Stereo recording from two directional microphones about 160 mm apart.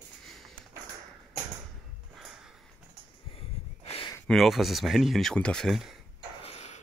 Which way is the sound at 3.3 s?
35° left (ahead or behind).